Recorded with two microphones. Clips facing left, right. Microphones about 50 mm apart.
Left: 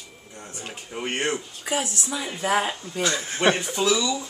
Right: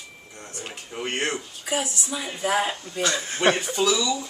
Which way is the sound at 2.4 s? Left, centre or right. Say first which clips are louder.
Even; left.